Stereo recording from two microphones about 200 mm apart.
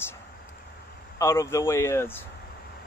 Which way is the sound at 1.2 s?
15° left (ahead or behind).